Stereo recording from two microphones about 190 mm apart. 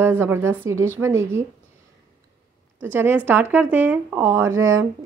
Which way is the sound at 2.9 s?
10° right (ahead or behind).